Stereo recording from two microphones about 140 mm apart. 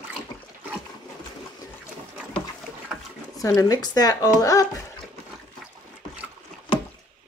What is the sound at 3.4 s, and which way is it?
Speech, 25° left (ahead or behind).